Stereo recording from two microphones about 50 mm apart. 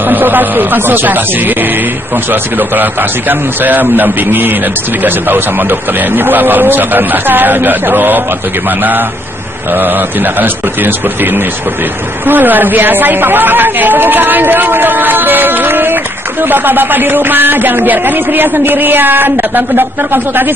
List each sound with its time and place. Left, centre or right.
0.0 s speech: right